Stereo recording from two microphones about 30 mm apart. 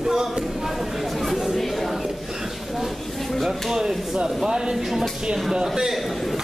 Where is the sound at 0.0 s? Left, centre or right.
Centre.